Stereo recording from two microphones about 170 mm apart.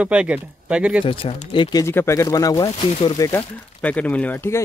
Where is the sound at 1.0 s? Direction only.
30° left (ahead or behind).